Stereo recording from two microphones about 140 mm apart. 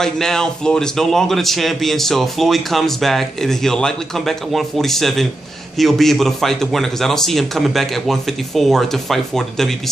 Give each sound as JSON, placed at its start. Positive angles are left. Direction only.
{"t": 0.0, "sound": "a man's voice", "side_deg": 5}